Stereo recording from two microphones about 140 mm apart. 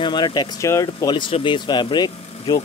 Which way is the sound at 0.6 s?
20° left (ahead or behind).